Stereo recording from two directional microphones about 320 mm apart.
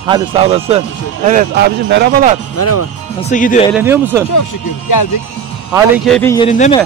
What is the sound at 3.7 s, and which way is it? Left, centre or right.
Speech, centre.